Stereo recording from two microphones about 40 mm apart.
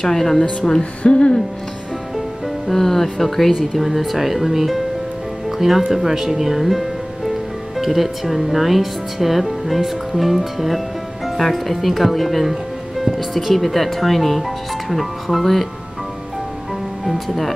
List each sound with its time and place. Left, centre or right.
0.0 s a woman's voice: centre
1.0 s hoot: left
2.1 s music: centre
3.7 s speech: centre
17.0 s speech: centre